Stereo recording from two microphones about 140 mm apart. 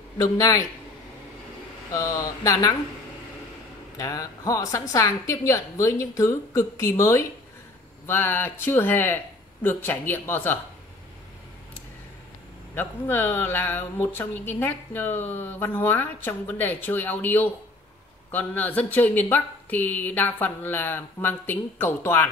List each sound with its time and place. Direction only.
0.2 s a woman's voice: 25° left (ahead or behind)
1.9 s a woman's voice: 25° left (ahead or behind)
4.0 s a woman's voice: 25° left (ahead or behind)
12.7 s speech: 15° left (ahead or behind)